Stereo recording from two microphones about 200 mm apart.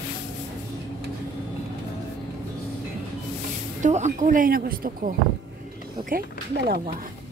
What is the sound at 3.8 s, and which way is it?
Speech, 35° right (ahead or behind).